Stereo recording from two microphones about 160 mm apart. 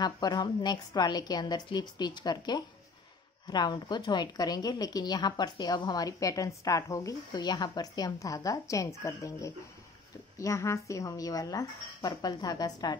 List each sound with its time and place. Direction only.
0.0 s a woman's voice: 25° left (ahead or behind)